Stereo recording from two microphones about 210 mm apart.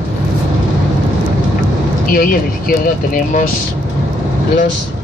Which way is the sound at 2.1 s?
45° left (ahead or behind).